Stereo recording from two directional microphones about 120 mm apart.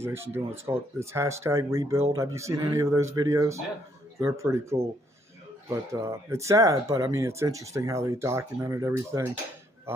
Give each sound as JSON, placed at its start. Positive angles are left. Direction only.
{"t": 0.0, "sound": "speech", "side_deg": -20}